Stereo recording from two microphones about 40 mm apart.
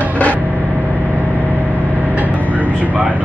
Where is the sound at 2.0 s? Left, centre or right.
Right.